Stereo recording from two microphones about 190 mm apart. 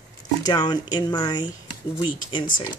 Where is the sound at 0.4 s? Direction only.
20° left (ahead or behind).